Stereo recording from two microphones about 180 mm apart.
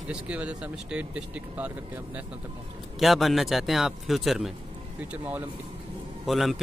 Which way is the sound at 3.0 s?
Centre (ahead or behind).